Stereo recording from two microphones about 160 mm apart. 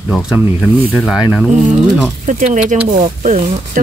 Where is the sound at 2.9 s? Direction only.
50° right (ahead or behind).